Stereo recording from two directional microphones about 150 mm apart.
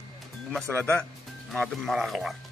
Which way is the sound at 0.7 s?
15° right (ahead or behind).